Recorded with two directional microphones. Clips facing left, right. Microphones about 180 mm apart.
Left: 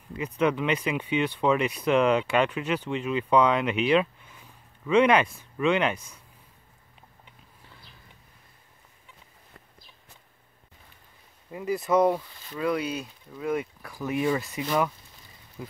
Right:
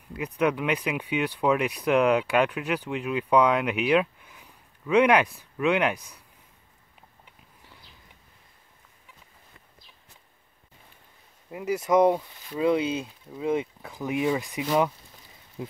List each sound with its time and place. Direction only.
0.4 s speech: 10° right (ahead or behind)
11.5 s speech: 15° right (ahead or behind)